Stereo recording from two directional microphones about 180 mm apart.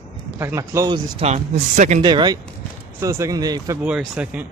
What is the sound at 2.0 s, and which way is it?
Speech, 25° right (ahead or behind).